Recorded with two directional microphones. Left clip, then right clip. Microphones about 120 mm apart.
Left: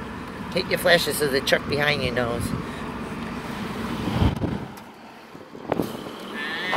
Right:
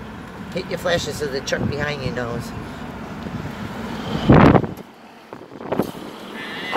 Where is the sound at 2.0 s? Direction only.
15° right (ahead or behind).